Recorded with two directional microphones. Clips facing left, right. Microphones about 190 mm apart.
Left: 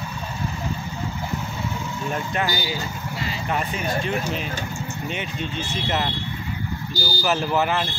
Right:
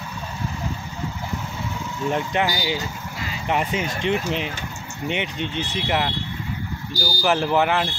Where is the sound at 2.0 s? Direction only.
20° right (ahead or behind).